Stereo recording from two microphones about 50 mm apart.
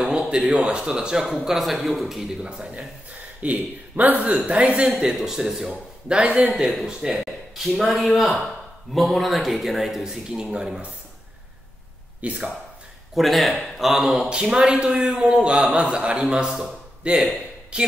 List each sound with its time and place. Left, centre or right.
0.0 s a man's voice: centre
1.4 s a man's voice: centre
2.4 s a man's voice: centre
3.4 s a man's voice: right
4.6 s a man's voice: centre
10.3 s a man's voice: centre
12.2 s a man's voice: right
13.1 s a man's voice: centre
17.0 s a man's voice: right